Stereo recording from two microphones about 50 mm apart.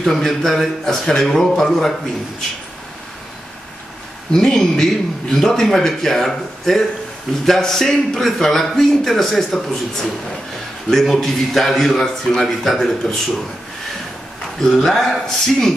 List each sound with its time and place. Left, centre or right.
0.0 s a man's voice: centre
4.3 s a man's voice: centre
14.6 s a man's voice: centre